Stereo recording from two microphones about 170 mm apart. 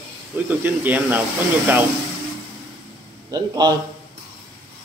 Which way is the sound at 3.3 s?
25° right (ahead or behind).